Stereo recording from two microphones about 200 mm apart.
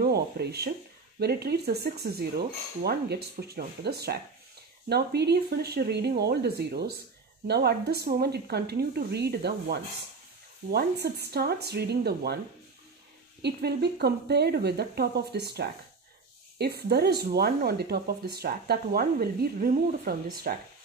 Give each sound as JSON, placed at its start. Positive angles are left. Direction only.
{"t": 0.0, "sound": "speech", "side_deg": -55}
{"t": 13.4, "sound": "speech", "side_deg": -55}